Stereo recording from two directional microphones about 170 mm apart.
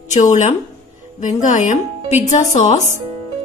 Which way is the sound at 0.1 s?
45° left (ahead or behind).